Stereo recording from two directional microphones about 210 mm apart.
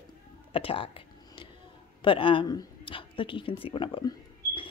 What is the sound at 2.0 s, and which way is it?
Speech, 25° left (ahead or behind).